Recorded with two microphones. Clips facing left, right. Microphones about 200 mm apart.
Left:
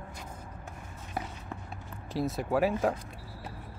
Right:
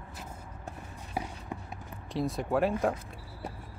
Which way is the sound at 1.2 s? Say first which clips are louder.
Right 1 dB; 10° right (ahead or behind).